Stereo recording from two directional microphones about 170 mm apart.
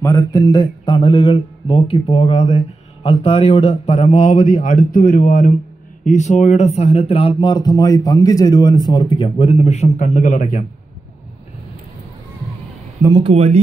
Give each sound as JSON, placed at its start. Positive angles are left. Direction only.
{"t": 0.0, "sound": "mantra", "side_deg": 20}
{"t": 13.0, "sound": "speech", "side_deg": -30}